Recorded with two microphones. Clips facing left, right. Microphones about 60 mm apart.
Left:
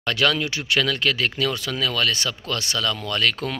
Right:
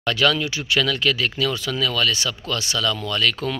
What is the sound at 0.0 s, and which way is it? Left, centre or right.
Speech, left.